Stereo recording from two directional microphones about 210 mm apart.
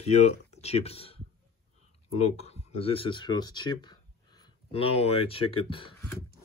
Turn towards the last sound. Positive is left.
turn(degrees=25)  # may be behind; listen again after turning